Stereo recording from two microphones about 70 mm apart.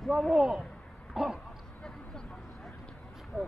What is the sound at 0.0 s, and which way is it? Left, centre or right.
Speech, centre.